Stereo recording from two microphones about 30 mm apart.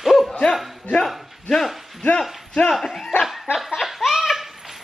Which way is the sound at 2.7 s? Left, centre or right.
Centre.